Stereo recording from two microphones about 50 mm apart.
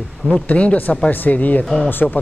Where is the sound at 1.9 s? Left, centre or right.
Left.